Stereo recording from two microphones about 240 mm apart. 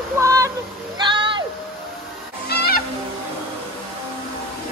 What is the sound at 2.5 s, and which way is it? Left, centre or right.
Fowl, left.